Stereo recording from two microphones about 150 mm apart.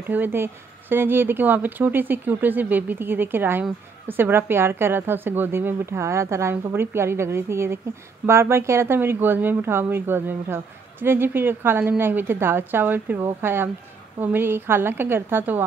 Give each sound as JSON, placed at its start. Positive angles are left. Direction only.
{"t": 0.0, "sound": "speech", "side_deg": -15}